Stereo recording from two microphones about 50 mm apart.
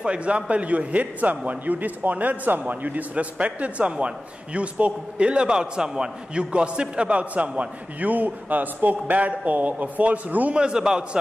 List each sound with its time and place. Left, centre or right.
0.0 s a man's voice: right
10.5 s a man's voice: centre